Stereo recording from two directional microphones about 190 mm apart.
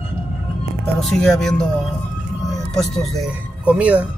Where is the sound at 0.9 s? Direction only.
Centre (ahead or behind).